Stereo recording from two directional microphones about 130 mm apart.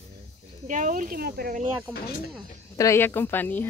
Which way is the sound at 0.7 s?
80° right.